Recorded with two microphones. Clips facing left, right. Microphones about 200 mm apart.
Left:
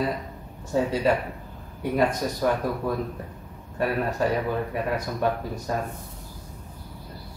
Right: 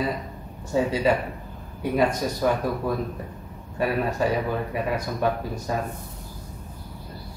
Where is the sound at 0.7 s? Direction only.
Centre (ahead or behind).